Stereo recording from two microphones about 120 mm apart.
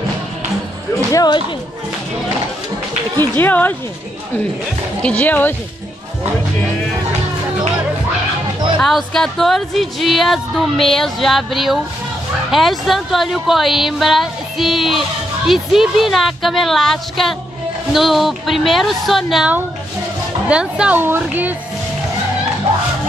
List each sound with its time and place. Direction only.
1.1 s speech: 35° left (ahead or behind)
3.2 s speech: 15° left (ahead or behind)
5.0 s speech: 15° left (ahead or behind)
8.8 s a woman's voice: 5° left (ahead or behind); by 21.5 s 15° right (ahead or behind)